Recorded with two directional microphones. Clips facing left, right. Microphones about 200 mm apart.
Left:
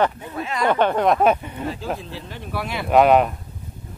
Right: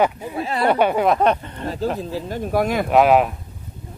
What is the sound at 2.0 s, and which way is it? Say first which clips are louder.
Speech: right 9 dB; 45° right (ahead or behind).